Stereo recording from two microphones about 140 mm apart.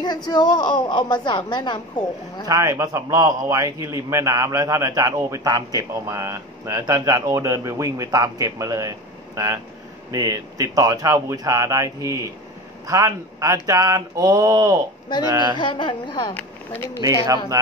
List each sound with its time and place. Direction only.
0.0 s a woman's voice: 30° left (ahead or behind)
2.4 s a man's voice: 25° right (ahead or behind)
15.5 s a woman's voice: 35° left (ahead or behind)
16.3 s speech: 15° left (ahead or behind)